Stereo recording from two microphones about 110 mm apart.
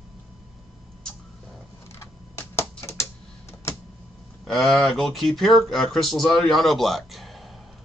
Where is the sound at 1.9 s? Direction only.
25° left (ahead or behind).